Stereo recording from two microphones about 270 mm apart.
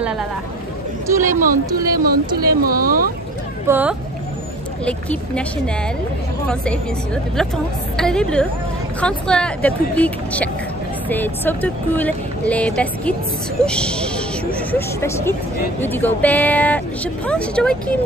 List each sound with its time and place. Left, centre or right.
1.0 s speech: centre
1.3 s speech: right
3.6 s speech: centre
4.8 s speech: centre
6.4 s speech: centre
8.0 s speech: centre